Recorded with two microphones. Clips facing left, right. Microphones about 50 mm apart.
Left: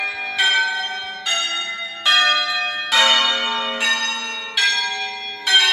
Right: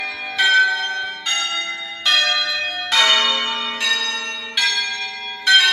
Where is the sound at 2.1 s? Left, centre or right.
Centre.